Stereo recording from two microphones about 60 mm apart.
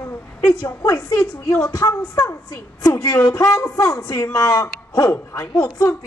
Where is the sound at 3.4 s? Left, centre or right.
Left.